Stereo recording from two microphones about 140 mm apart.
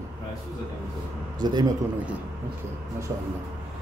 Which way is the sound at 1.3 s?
30° right (ahead or behind).